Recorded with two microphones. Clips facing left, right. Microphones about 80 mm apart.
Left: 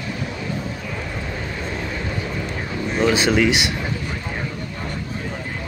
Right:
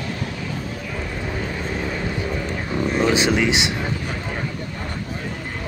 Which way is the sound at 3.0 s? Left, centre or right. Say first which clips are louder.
Left 2 dB; centre.